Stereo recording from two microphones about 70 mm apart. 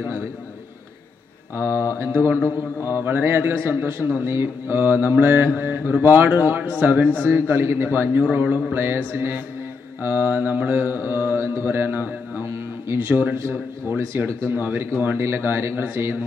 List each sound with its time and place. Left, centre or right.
1.6 s speech: left
2.0 s mantra: right
6.1 s a man's voice: right
7.2 s mantra: right
8.2 s a man's voice: right
8.7 s mantra: right